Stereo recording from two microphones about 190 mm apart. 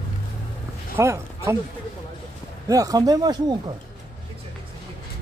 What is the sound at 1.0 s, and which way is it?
Speech, 15° right (ahead or behind).